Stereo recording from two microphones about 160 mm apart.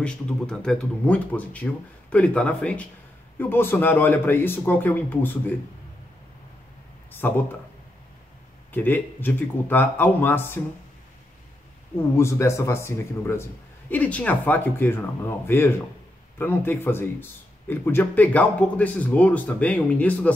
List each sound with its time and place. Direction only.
0.0 s speech: 5° left (ahead or behind)
7.1 s speech: 10° left (ahead or behind)
8.7 s speech: 10° left (ahead or behind)
12.2 s speech: 15° left (ahead or behind)